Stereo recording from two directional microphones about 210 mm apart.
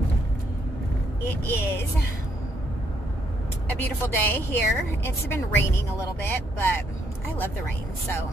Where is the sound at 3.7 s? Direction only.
10° left (ahead or behind).